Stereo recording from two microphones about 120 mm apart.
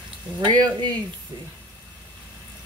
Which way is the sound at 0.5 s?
40° right (ahead or behind).